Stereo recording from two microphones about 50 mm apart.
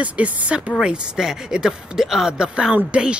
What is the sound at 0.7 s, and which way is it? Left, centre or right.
Speech, centre.